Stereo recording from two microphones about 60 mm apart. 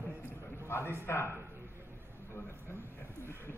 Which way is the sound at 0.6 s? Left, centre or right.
Left.